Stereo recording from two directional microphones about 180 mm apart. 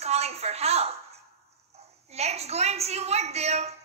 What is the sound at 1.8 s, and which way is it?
A woman's voice, 35° right (ahead or behind).